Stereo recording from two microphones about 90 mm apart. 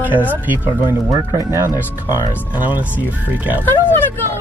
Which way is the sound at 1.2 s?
35° right (ahead or behind).